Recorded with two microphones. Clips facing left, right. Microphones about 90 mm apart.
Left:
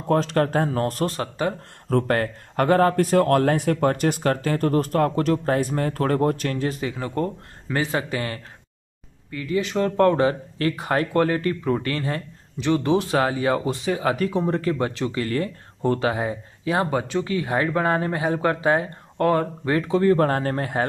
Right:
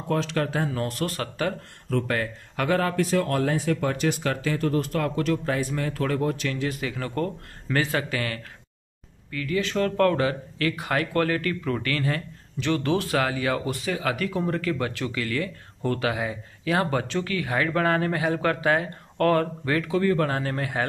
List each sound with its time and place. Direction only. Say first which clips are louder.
0.1 s speech: left 5 dB; 40° left (ahead or behind)
1.0 s speech: left 3 dB; 25° left (ahead or behind)
1.9 s speech: left 5 dB; 45° left (ahead or behind)
16.7 s speech: left 2 dB; 20° left (ahead or behind); by 20.8 s 40° left (ahead or behind)